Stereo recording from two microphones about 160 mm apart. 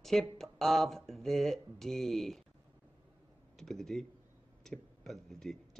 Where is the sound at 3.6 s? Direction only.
Centre (ahead or behind).